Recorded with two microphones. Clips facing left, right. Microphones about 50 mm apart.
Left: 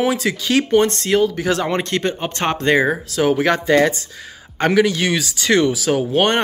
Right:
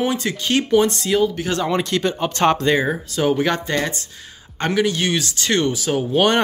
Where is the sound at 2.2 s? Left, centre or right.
Left.